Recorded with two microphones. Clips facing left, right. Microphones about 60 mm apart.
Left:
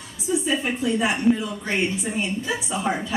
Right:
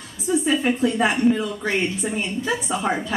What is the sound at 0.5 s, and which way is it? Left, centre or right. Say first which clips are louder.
A woman's voice: right 4 dB; right.